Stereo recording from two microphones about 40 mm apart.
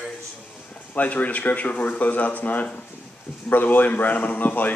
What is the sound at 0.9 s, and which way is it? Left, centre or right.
A man's voice, left.